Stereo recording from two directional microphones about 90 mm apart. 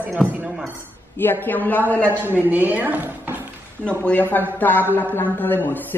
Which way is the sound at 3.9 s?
15° left (ahead or behind).